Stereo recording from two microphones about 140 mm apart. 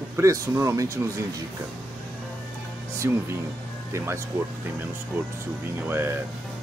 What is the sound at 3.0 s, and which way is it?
Speech, 20° right (ahead or behind).